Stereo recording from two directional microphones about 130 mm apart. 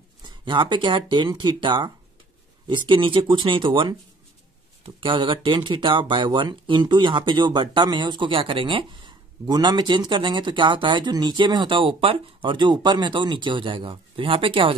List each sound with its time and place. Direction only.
0.2 s speech: 40° right (ahead or behind)